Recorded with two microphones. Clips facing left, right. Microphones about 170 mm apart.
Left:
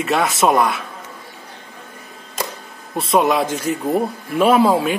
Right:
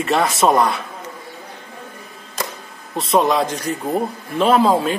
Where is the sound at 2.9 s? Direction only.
5° left (ahead or behind).